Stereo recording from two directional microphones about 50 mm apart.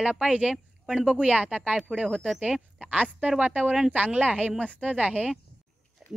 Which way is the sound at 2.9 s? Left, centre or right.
Right.